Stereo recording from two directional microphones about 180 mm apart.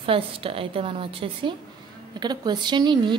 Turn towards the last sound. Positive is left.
turn(degrees=-25)  # may be behind; listen again after turning